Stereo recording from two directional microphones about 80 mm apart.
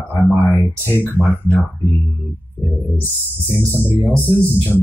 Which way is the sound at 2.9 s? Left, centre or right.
Left.